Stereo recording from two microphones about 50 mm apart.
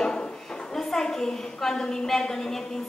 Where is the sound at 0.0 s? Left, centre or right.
Centre.